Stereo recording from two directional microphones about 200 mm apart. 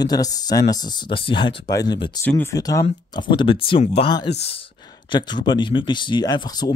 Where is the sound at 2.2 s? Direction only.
10° left (ahead or behind).